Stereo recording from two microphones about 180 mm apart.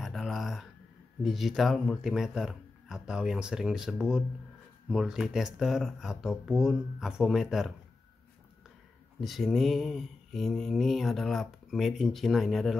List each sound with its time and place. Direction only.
0.0 s a sound: centre (ahead or behind)
1.2 s mantra: centre (ahead or behind)
9.2 s mantra: centre (ahead or behind)